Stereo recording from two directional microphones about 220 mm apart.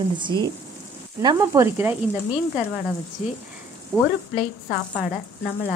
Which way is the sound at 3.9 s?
10° right (ahead or behind).